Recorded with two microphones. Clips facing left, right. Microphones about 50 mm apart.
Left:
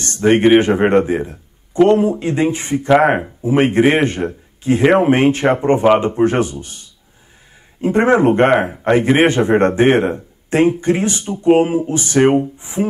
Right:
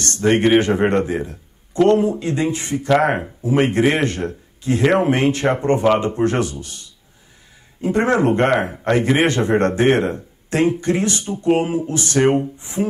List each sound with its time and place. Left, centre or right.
0.0 s a man's voice: centre